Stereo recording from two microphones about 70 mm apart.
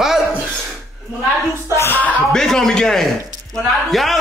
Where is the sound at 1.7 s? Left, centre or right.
Left.